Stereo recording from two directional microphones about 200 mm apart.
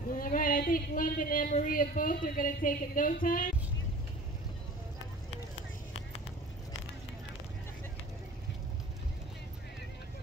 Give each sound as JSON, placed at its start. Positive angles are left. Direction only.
{"t": 0.1, "sound": "speech", "side_deg": 45}